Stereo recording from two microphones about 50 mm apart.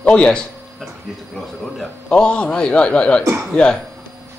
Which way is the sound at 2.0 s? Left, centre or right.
Centre.